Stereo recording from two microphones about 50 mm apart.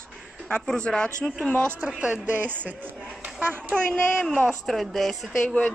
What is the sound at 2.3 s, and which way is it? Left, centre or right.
A woman's voice, right.